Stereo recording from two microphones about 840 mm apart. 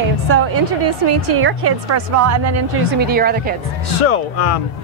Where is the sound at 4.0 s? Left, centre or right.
Left.